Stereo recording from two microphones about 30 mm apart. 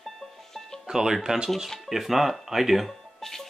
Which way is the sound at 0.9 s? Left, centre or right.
Right.